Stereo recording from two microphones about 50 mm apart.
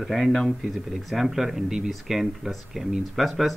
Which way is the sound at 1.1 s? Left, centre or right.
Centre.